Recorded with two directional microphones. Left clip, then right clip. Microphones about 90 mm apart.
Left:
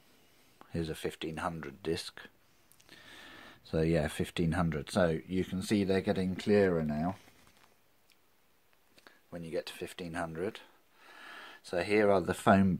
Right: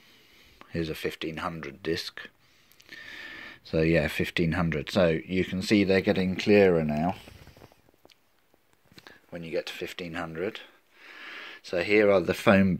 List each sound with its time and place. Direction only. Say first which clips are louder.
0.6 s speech: right 6 dB; 40° left (ahead or behind); by 7.2 s 20° left (ahead or behind)
9.0 s speech: right 5 dB; 55° left (ahead or behind)